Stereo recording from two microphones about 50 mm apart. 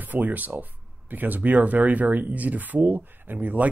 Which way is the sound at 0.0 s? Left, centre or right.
Right.